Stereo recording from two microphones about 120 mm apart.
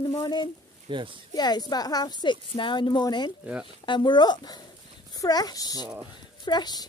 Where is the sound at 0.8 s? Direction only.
45° right (ahead or behind).